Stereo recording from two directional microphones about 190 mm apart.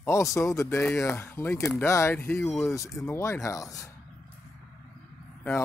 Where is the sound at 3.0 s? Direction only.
15° left (ahead or behind).